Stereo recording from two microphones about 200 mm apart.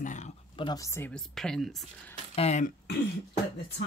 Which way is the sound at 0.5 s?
20° left (ahead or behind).